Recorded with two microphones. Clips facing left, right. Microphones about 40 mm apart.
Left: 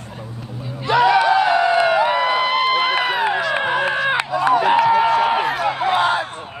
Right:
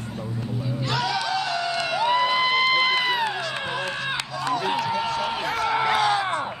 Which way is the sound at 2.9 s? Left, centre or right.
Centre.